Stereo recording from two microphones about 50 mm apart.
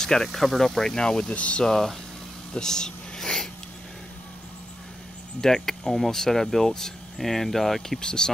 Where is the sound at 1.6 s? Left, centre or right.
Centre.